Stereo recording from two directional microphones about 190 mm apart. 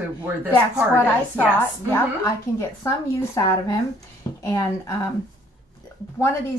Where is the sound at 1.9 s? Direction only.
15° left (ahead or behind).